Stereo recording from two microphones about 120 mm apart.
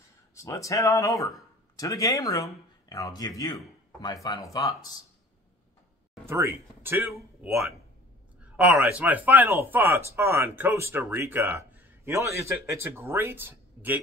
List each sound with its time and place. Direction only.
0.3 s speech: 25° left (ahead or behind)
6.2 s speech: 20° right (ahead or behind)
8.8 s speech: 10° right (ahead or behind)